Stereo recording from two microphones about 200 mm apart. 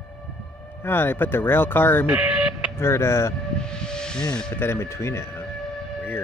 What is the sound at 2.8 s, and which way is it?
Speech, 15° left (ahead or behind).